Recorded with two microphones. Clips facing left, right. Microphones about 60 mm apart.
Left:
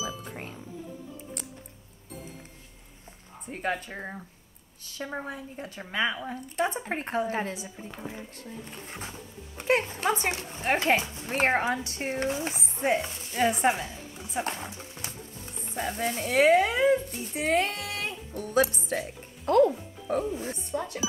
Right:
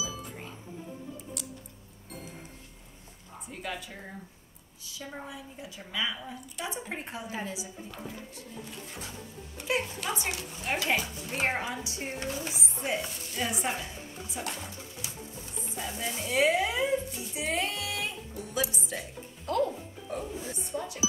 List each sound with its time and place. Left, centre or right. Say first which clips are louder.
3.4 s a woman's voice: left 7 dB; left
7.9 s speech: left 5 dB; left
9.6 s speech: left 6 dB; left
15.0 s music: left 5 dB; left
15.7 s speech: left 6 dB; left